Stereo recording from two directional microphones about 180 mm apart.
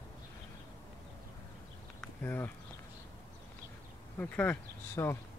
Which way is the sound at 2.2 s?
10° left (ahead or behind).